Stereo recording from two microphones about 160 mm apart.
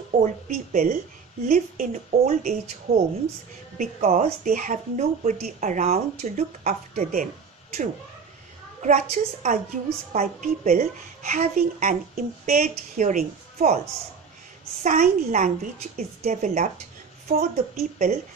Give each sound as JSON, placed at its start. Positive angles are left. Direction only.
{"t": 0.2, "sound": "a woman's voice", "side_deg": -45}
{"t": 9.1, "sound": "a woman's voice", "side_deg": -50}
{"t": 12.6, "sound": "a woman's voice", "side_deg": -50}
{"t": 14.8, "sound": "a woman's voice", "side_deg": -50}